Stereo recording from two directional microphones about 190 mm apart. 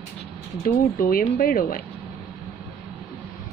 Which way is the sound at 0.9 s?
50° left (ahead or behind).